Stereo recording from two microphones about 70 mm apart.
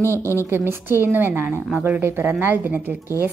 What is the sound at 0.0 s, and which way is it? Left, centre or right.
Speech, left.